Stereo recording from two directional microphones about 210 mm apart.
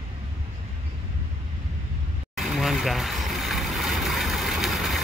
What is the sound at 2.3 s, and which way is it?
Vehicle, centre (ahead or behind).